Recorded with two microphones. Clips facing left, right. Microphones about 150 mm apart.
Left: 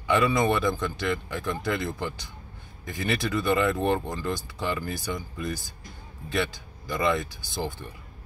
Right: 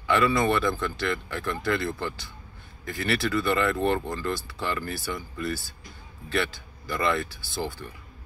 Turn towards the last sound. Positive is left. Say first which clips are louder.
# even
turn(degrees=20)  # may be behind; listen again after turning